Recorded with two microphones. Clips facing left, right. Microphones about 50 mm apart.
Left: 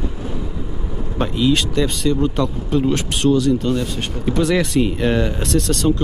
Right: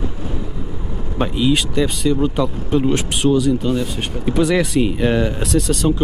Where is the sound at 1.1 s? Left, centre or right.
Centre.